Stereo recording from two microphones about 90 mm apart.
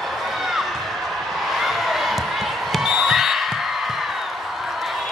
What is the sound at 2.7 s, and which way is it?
Basketball bounce, 5° right (ahead or behind).